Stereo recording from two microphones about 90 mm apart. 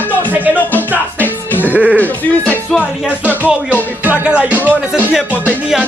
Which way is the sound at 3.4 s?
20° right (ahead or behind).